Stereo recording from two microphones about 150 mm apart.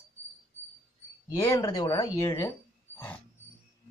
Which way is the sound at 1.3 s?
25° left (ahead or behind).